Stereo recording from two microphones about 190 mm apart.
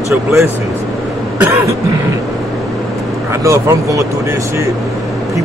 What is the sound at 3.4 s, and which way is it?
Speech, 15° right (ahead or behind).